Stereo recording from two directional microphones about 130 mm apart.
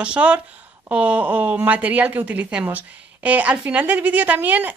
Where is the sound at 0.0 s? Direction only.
10° right (ahead or behind).